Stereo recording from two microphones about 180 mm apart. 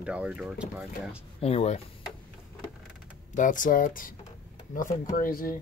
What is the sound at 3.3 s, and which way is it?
Speech, 45° left (ahead or behind).